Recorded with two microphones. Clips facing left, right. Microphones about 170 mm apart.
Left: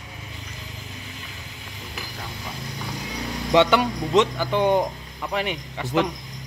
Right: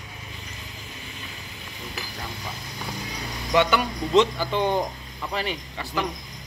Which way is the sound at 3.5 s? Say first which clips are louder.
Left 3 dB; 25° left (ahead or behind).